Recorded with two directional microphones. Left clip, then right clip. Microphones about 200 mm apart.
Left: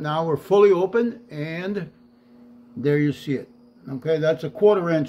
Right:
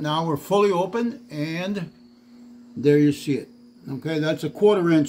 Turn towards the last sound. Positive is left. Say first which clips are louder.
# even
turn(degrees=-15)  # may be behind; listen again after turning